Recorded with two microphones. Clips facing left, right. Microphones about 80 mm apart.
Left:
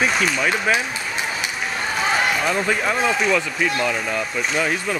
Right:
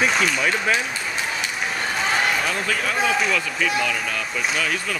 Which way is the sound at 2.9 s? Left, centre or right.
Centre.